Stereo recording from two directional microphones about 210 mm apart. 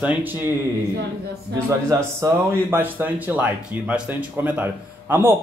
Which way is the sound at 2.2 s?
10° right (ahead or behind).